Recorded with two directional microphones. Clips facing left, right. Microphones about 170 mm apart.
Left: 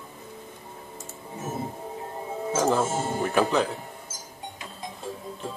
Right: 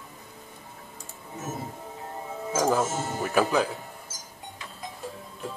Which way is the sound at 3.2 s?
5° right (ahead or behind).